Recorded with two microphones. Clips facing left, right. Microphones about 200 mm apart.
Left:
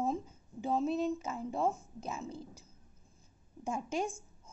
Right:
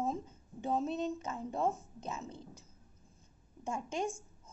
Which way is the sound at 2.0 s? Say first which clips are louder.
Left 2 dB; 10° left (ahead or behind).